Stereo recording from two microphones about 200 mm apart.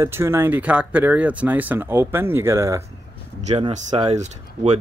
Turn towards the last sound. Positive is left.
turn(degrees=-35)  # may be behind; listen again after turning